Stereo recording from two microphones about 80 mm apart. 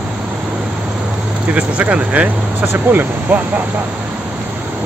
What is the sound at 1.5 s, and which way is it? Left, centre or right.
Speech, centre.